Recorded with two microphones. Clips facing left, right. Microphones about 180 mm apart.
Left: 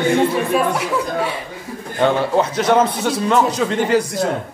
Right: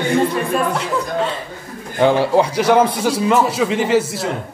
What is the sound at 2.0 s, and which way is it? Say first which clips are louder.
A man's voice: right 2 dB; 10° right (ahead or behind).